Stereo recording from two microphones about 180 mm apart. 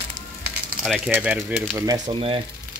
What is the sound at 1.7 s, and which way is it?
Speech, 20° right (ahead or behind).